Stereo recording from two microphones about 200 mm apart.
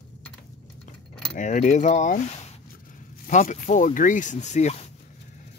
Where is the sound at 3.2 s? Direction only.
35° left (ahead or behind).